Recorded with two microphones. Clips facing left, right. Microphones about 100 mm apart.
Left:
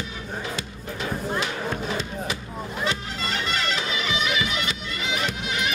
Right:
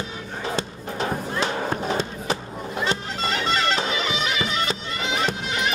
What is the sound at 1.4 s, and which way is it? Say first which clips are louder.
Music: right 3 dB; 35° right (ahead or behind).